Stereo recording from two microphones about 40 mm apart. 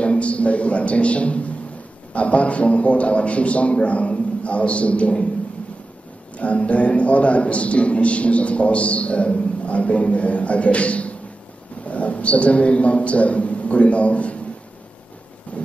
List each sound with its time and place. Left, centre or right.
0.0 s a man's voice: left
6.3 s a man's voice: left
15.5 s thunder: left